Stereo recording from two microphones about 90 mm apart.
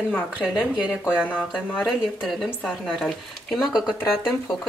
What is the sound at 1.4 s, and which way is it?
Speech, 15° left (ahead or behind).